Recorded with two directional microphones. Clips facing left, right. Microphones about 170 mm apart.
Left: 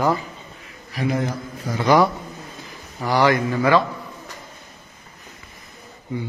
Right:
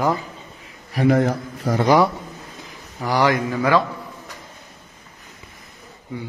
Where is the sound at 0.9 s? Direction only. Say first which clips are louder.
Right 6 dB; 50° right (ahead or behind).